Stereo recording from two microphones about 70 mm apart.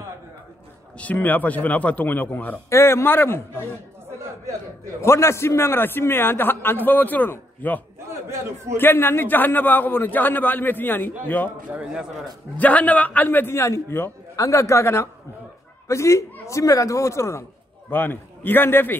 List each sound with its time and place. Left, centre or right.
1.1 s a man's voice: left
2.7 s a man's voice: left
5.0 s a man's voice: left
8.3 s a man's voice: right
8.7 s a man's voice: left
12.5 s a man's voice: left
13.6 s a man's voice: left
14.3 s a man's voice: left
17.9 s a man's voice: left